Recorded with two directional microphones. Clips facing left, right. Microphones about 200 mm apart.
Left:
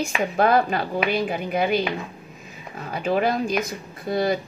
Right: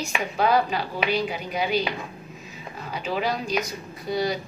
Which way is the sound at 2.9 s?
55° left (ahead or behind).